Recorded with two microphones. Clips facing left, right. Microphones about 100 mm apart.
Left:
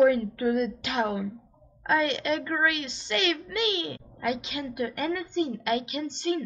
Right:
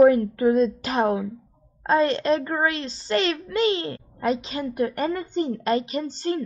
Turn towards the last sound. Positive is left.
turn(degrees=-40)  # may be behind; listen again after turning